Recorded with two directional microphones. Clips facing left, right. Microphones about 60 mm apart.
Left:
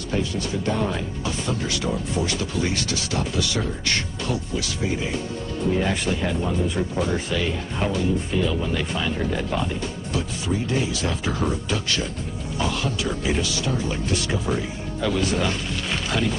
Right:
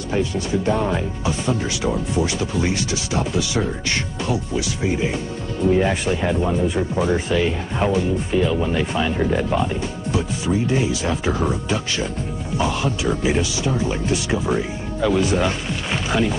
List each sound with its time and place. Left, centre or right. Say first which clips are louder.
0.7 s speech: right 3 dB; centre
5.8 s speech: right 4 dB; centre